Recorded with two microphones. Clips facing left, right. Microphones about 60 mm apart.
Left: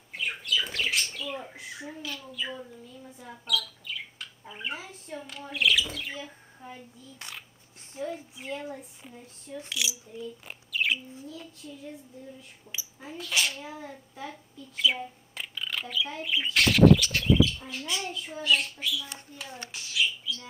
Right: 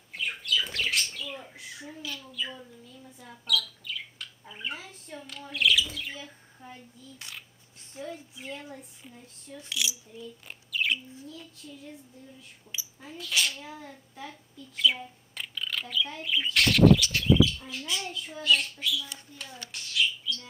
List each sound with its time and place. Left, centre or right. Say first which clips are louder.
0.1 s speech: even; centre
8.0 s a woman's voice: left 4 dB; left
8.4 s speech: left 4 dB; centre
10.5 s bird: even; centre
11.2 s speech: left 2 dB; centre
12.7 s a child's voice: left 2 dB; centre
19.7 s a sound: even; centre